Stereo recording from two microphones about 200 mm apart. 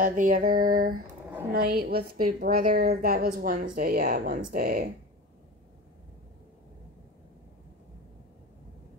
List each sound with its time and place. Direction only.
0.0 s a woman's voice: 40° right (ahead or behind)